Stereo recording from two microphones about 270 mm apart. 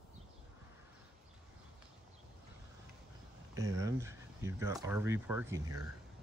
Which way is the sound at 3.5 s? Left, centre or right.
Centre.